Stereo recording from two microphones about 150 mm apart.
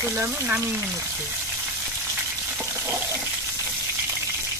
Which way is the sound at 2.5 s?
15° right (ahead or behind).